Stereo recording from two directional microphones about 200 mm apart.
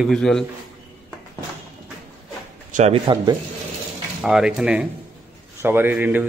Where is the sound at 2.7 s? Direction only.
35° right (ahead or behind).